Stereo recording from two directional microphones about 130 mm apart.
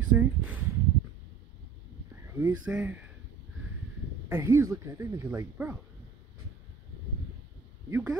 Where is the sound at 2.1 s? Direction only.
20° right (ahead or behind).